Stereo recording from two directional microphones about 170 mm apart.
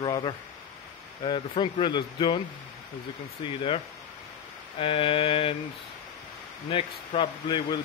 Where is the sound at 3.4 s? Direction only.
30° left (ahead or behind).